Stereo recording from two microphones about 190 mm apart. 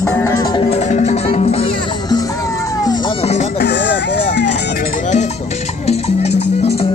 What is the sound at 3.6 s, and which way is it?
Music, 65° left (ahead or behind).